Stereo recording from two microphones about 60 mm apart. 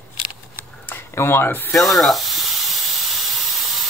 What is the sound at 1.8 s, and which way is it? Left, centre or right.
Sizzle, centre.